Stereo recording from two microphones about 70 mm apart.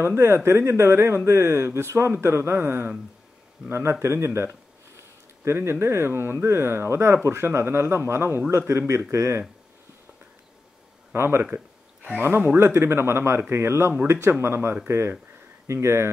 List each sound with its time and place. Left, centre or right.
0.0 s speech: right
11.1 s speech: right